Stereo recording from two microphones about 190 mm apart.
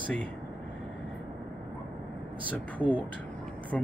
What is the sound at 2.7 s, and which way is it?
Speech, 5° left (ahead or behind).